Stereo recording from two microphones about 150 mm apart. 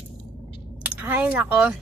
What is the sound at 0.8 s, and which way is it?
Speech, 10° right (ahead or behind).